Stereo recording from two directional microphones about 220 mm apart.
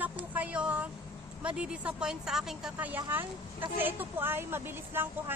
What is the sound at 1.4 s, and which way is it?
A woman's voice, 5° right (ahead or behind).